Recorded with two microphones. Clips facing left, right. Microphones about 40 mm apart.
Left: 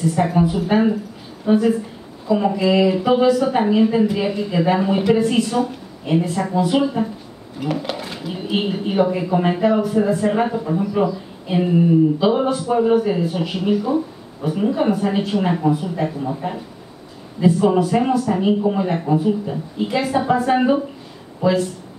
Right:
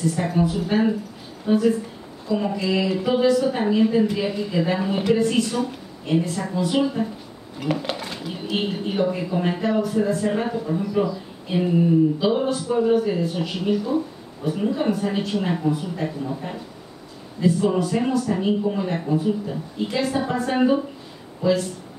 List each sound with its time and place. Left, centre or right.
0.0 s a woman's voice: centre
7.5 s speech: centre
11.5 s a woman's voice: centre
17.4 s a woman's voice: centre